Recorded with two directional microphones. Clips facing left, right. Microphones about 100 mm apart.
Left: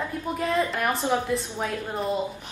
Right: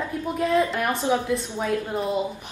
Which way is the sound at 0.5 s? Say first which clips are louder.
Right 3 dB; centre (ahead or behind).